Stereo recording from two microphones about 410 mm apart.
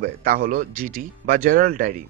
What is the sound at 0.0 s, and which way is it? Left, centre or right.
Speech, right.